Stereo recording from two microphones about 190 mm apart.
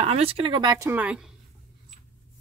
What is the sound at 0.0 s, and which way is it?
Speech, 30° right (ahead or behind).